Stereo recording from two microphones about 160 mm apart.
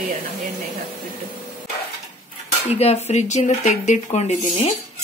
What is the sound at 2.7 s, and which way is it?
Speech, 40° left (ahead or behind).